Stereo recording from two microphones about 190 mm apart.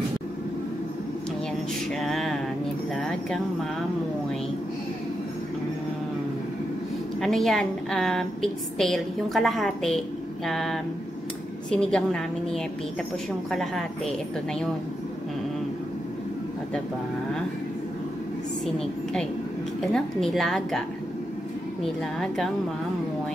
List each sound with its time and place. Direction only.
2.0 s a sound: centre (ahead or behind)
7.2 s a woman's voice: centre (ahead or behind)
13.5 s a woman's voice: centre (ahead or behind)
19.8 s a woman's voice: centre (ahead or behind)